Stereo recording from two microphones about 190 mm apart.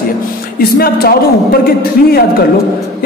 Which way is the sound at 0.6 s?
55° left (ahead or behind).